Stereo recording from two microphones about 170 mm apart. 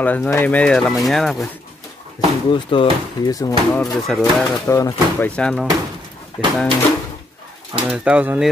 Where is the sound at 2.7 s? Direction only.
30° left (ahead or behind).